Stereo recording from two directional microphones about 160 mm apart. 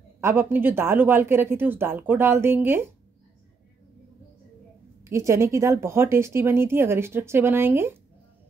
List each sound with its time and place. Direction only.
0.2 s speech: 15° right (ahead or behind)
5.0 s speech: 15° right (ahead or behind)